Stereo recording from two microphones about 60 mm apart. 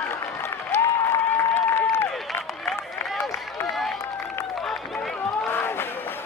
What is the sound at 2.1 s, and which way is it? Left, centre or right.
Run, centre.